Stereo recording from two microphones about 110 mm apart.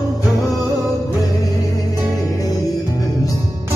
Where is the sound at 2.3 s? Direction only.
35° left (ahead or behind).